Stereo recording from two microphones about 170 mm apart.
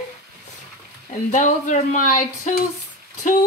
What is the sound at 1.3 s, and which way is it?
Speech, 45° left (ahead or behind).